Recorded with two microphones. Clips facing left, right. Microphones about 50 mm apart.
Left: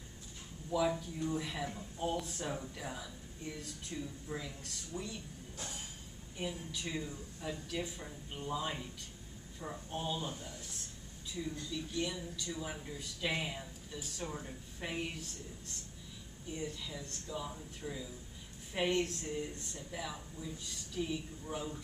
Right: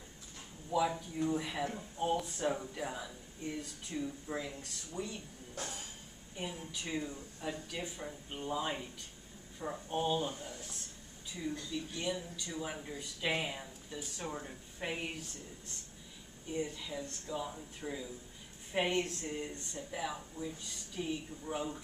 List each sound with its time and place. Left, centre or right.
0.7 s speech: centre
2.1 s speech: centre
2.4 s speech: centre
4.9 s speech: centre
6.3 s speech: centre
16.8 s speech: centre
20.0 s speech: centre